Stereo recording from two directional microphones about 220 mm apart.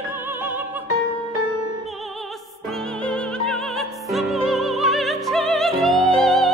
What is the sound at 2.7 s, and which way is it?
Music, 5° left (ahead or behind).